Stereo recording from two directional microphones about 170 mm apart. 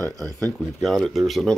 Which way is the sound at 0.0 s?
20° right (ahead or behind).